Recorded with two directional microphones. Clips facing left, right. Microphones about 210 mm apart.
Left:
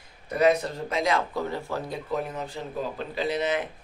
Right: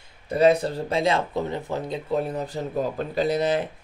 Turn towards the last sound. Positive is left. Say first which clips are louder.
# right 4 dB
turn(degrees=-35)  # may be behind; listen again after turning